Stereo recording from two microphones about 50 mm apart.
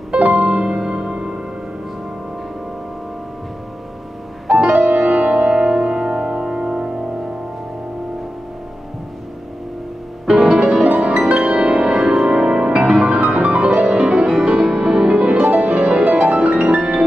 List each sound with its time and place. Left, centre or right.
0.2 s music: right
0.7 s music: centre
4.6 s music: right
10.2 s music: centre
10.9 s music: right; by 12.3 s centre
12.3 s music: right
15.1 s music: right